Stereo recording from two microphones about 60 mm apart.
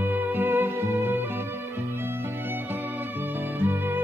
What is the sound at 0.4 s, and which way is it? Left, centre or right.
Music, right.